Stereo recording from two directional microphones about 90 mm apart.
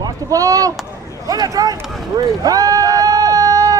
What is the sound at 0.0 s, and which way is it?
Speech, 40° right (ahead or behind).